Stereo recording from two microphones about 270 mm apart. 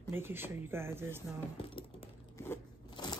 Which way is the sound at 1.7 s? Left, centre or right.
Centre.